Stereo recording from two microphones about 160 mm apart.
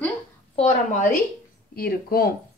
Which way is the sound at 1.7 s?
70° left (ahead or behind).